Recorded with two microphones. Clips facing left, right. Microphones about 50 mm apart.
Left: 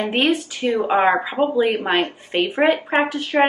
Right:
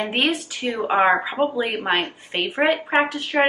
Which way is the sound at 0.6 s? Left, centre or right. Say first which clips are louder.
Left 5 dB; right.